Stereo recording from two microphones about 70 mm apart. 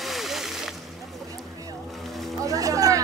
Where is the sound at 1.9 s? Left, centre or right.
Centre.